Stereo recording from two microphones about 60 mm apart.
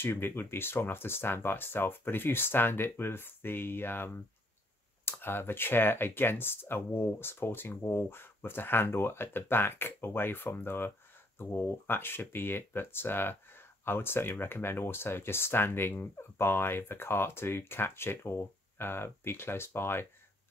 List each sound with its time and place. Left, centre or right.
0.0 s speech: left